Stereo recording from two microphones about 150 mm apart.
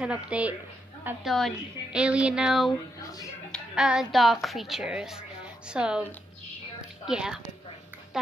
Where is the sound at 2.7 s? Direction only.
25° left (ahead or behind).